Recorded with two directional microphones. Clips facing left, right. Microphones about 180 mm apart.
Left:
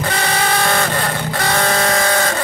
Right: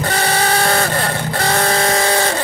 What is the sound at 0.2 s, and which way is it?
Vehicle, 35° right (ahead or behind).